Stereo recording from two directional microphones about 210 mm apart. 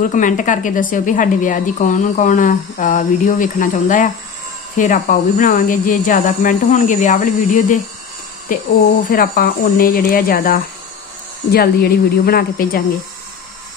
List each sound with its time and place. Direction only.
0.0 s a woman's voice: 40° left (ahead or behind)